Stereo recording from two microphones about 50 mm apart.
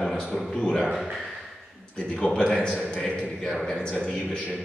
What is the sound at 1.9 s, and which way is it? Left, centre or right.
A man's voice, left.